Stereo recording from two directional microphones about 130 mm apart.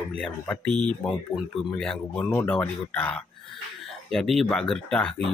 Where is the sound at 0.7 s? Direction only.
35° right (ahead or behind).